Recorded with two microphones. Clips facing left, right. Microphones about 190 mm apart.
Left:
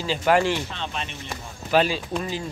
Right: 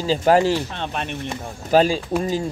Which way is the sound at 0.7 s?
55° right (ahead or behind).